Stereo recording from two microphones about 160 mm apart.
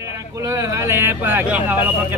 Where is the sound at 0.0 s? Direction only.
20° right (ahead or behind).